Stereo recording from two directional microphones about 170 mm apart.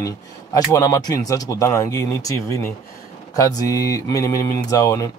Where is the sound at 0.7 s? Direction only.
20° left (ahead or behind).